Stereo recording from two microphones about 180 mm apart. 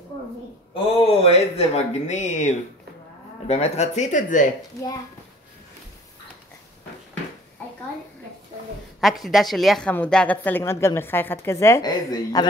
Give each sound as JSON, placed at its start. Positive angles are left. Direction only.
{"t": 1.0, "sound": "speech", "side_deg": 35}
{"t": 9.0, "sound": "a woman's voice", "side_deg": 0}